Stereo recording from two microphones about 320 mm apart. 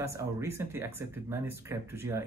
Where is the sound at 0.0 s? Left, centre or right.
Centre.